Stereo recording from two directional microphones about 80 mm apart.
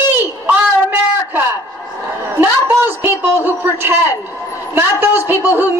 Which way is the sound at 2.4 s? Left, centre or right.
Right.